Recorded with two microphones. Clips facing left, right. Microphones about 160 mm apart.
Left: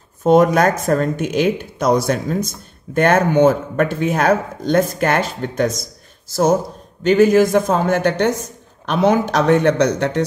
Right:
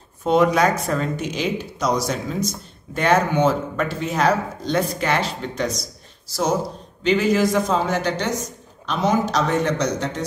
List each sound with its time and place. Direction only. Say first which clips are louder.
0.2 s a man's voice: left 4 dB; 45° left (ahead or behind); by 10.2 s 65° left (ahead or behind)